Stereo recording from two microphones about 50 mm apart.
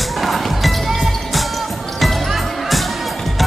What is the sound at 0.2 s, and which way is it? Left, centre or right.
Music, centre.